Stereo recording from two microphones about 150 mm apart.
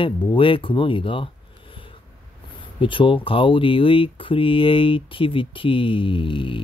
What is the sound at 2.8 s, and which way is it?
Speech, 35° left (ahead or behind).